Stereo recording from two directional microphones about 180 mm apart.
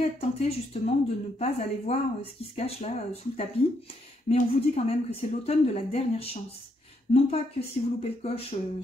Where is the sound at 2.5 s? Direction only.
35° left (ahead or behind).